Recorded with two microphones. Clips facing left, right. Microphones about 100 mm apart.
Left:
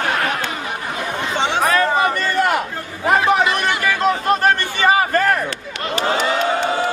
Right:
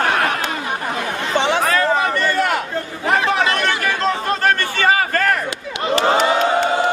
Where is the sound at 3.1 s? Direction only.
20° left (ahead or behind).